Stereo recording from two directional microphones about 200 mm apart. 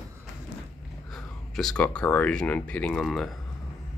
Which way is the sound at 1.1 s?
Centre (ahead or behind).